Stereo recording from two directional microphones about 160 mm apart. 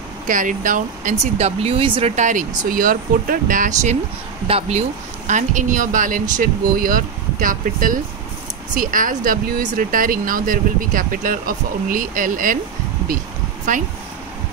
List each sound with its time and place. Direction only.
0.3 s speech: 55° right (ahead or behind)
13.7 s speech: 55° right (ahead or behind)